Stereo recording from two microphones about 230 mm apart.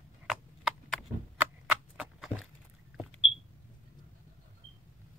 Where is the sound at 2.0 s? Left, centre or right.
Centre.